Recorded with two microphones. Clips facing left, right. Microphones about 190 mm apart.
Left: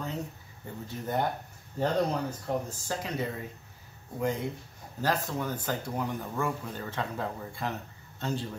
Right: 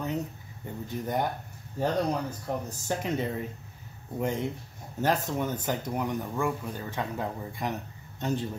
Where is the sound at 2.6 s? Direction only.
20° right (ahead or behind).